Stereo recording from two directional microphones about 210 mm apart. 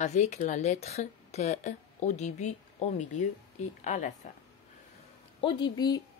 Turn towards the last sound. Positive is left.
turn(degrees=20)  # may be behind; listen again after turning